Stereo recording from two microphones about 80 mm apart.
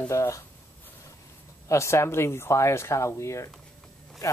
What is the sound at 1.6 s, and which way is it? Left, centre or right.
Speech, left.